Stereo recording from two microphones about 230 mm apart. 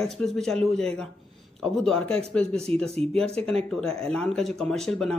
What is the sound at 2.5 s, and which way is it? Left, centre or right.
Speech, right.